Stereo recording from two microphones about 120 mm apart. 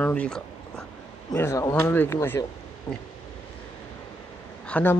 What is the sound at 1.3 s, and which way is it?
Speech, 25° left (ahead or behind).